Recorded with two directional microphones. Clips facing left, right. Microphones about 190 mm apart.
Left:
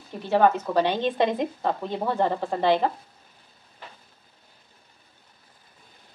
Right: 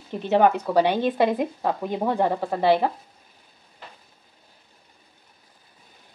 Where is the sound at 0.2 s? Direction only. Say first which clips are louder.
Right 1 dB; 20° right (ahead or behind).